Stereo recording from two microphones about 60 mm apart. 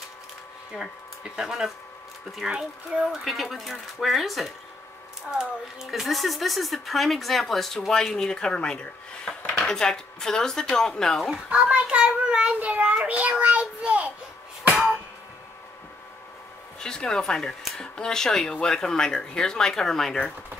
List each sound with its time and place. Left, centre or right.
0.7 s speech: centre
11.5 s child singing: centre
16.8 s speech: centre